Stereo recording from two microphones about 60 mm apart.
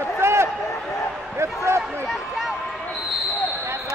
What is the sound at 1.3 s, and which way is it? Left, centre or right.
Basketball bounce, right.